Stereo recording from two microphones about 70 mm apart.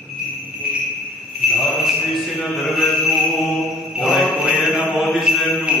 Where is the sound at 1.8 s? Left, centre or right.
Centre.